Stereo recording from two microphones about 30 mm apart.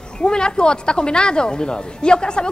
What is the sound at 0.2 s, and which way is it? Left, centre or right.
Speech, left.